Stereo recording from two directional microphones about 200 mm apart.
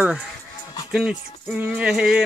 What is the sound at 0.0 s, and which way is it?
Music, centre (ahead or behind).